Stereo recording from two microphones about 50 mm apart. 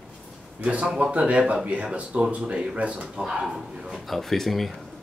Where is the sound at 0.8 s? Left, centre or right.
Centre.